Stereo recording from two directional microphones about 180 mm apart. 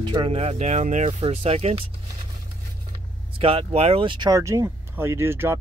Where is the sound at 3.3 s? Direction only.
30° right (ahead or behind).